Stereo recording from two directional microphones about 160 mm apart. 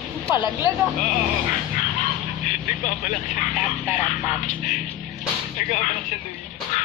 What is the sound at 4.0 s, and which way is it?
Music, 50° left (ahead or behind).